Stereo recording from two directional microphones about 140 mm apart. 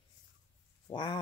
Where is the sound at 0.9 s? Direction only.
30° left (ahead or behind).